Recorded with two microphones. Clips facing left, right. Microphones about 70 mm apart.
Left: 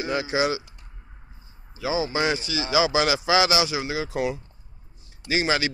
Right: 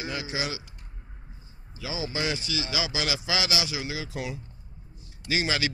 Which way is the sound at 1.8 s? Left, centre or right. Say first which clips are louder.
Left 7 dB; left.